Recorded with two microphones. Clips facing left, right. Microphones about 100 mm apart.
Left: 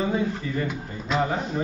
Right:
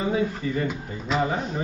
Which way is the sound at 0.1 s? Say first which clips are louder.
Right 1 dB; centre (ahead or behind).